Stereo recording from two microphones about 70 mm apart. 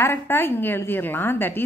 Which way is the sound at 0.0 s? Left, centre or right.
Left.